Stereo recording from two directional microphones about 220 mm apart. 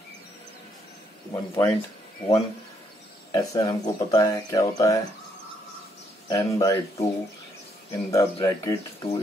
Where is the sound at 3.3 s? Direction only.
15° left (ahead or behind).